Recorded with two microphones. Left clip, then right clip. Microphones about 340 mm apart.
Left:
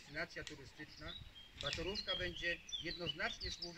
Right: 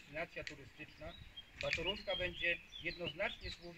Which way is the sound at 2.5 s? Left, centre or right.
Centre.